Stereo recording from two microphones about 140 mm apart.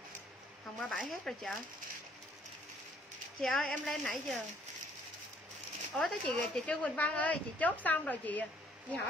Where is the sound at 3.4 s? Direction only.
Centre (ahead or behind).